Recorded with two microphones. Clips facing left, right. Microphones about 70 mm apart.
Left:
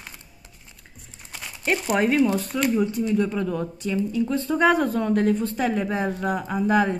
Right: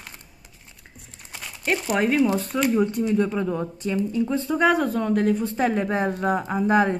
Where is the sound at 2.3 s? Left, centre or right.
Right.